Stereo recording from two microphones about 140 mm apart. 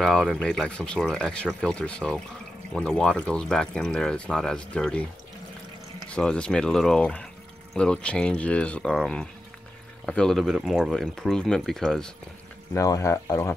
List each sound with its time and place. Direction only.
0.0 s speech: centre (ahead or behind)
6.0 s speech: 5° left (ahead or behind)
12.7 s speech: 25° left (ahead or behind)